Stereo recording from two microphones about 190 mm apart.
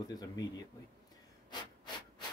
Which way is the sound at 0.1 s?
20° left (ahead or behind).